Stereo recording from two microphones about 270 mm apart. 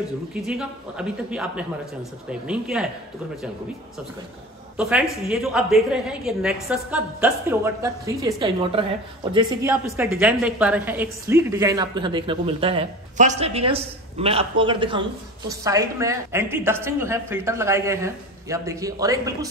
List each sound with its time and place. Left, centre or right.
0.3 s a woman's voice: centre
4.7 s a woman's voice: centre